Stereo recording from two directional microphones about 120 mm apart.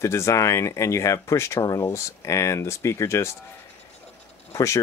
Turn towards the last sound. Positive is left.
turn(degrees=25)  # may be behind; listen again after turning